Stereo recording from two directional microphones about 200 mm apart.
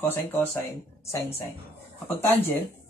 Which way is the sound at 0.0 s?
10° left (ahead or behind).